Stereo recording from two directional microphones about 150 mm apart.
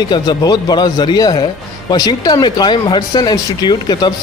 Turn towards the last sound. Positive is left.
turn(degrees=30)  # may be behind; listen again after turning